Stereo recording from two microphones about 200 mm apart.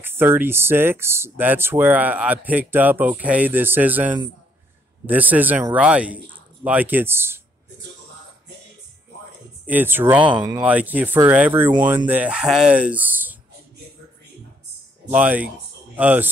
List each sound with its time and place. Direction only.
0.0 s speech: 10° right (ahead or behind)
9.7 s speech: 10° right (ahead or behind)
10.2 s speech: 20° right (ahead or behind)
10.6 s speech: 5° right (ahead or behind)
15.0 s speech: 10° right (ahead or behind)